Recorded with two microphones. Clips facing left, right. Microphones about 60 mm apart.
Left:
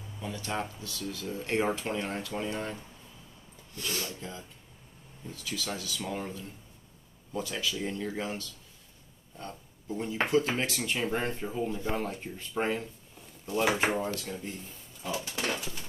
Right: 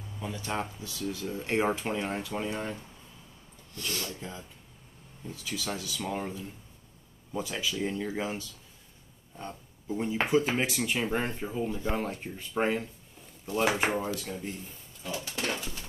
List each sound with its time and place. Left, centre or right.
0.2 s speech: centre
3.8 s speech: centre
4.2 s speech: centre
13.5 s speech: centre